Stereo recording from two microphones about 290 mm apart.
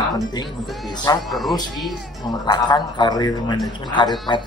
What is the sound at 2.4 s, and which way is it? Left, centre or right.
A man's voice, centre.